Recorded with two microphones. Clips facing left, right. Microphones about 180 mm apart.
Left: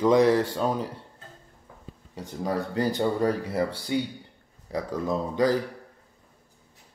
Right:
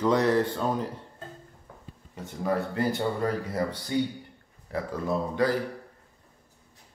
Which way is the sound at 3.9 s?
20° left (ahead or behind).